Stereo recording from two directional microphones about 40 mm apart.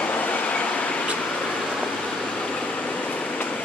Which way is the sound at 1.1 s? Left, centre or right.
Left.